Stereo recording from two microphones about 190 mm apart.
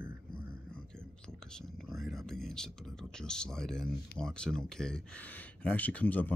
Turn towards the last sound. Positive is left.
turn(degrees=10)  # may be behind; listen again after turning